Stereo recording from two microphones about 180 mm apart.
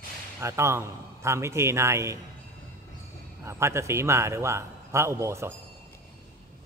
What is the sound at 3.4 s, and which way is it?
A man's voice, 15° right (ahead or behind).